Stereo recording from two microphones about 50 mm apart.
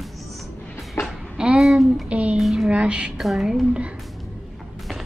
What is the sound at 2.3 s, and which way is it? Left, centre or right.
Speech, centre.